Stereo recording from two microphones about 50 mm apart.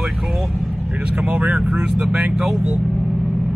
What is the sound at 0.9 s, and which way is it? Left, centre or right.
Speech, right.